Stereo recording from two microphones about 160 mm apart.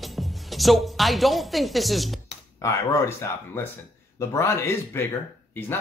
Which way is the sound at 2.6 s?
20° left (ahead or behind).